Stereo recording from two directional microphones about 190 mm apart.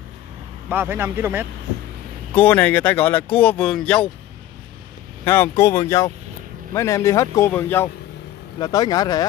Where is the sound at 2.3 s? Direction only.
10° left (ahead or behind).